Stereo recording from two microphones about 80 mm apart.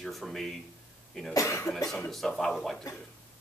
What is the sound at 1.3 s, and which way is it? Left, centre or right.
Speech, left.